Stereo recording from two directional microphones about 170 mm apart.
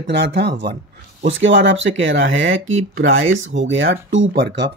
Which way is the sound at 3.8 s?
90° right.